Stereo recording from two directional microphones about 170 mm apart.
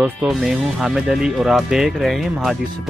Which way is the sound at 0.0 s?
5° right (ahead or behind).